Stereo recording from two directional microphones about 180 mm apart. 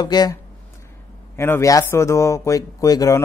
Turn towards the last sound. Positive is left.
turn(degrees=20)  # may be behind; listen again after turning